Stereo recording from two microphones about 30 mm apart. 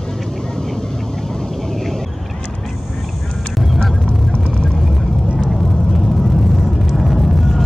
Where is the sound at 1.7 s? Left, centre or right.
Centre.